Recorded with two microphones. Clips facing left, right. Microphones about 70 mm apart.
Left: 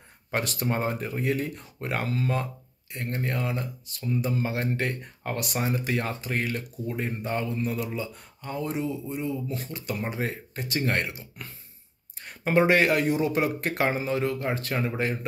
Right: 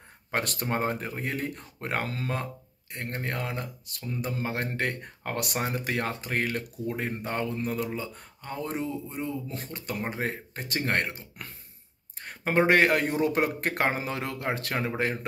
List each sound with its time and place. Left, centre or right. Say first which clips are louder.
0.3 s speech: left 1 dB; right